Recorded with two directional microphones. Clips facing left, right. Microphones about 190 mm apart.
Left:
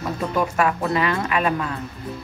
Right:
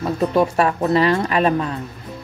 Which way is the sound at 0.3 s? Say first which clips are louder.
Right 2 dB; 35° right (ahead or behind).